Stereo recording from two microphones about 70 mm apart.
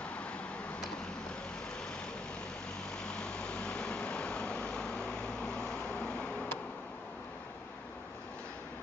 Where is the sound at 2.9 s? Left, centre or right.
Centre.